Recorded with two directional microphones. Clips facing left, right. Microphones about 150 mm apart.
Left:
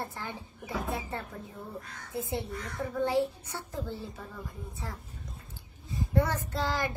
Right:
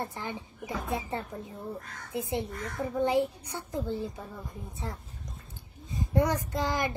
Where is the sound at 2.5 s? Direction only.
45° right (ahead or behind).